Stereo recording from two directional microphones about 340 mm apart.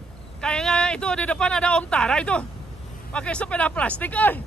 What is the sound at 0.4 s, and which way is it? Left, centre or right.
Speech, centre.